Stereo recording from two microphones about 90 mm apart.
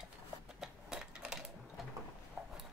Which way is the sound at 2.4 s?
Centre (ahead or behind).